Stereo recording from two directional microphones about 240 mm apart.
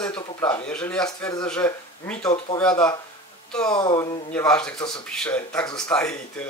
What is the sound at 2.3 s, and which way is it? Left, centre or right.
Speech, left.